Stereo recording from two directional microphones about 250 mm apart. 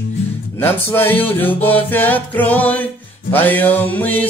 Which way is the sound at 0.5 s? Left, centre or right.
Centre.